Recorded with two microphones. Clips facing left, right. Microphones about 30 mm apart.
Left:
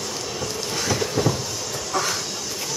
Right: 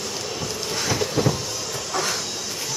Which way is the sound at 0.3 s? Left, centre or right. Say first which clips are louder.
Left 1 dB; centre.